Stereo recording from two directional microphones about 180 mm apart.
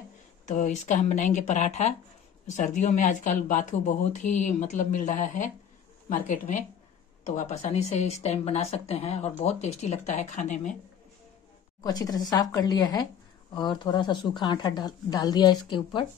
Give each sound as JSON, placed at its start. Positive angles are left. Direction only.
{"t": 0.5, "sound": "speech", "side_deg": 40}
{"t": 11.8, "sound": "speech", "side_deg": 20}